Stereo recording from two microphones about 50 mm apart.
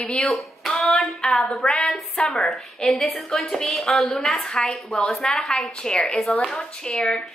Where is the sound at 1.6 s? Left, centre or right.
Centre.